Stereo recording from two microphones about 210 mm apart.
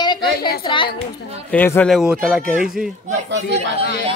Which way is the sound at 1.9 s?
Centre (ahead or behind).